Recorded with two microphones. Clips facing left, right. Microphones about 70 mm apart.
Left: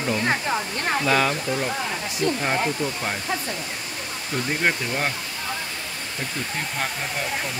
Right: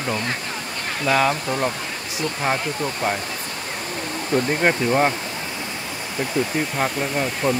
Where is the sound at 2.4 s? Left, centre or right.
Centre.